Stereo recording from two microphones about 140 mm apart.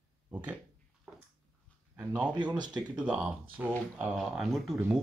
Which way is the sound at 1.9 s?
10° right (ahead or behind).